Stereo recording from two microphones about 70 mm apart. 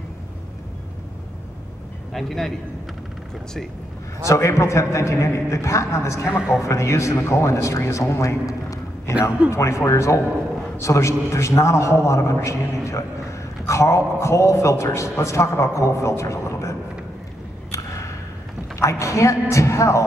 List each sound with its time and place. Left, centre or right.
2.1 s a man's voice: centre
4.3 s a man's voice: left
17.6 s a sound: left
18.8 s speech: left